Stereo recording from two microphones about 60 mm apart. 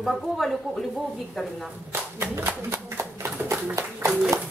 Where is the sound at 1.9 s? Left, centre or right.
Right.